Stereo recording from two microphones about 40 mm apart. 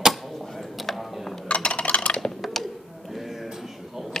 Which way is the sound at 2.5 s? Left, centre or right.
Centre.